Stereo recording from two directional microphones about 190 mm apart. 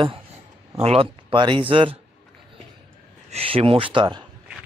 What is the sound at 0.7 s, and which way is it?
Speech, 30° right (ahead or behind).